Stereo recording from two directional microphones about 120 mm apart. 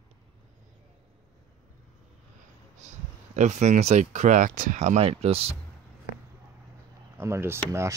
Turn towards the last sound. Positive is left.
turn(degrees=-25)  # may be behind; listen again after turning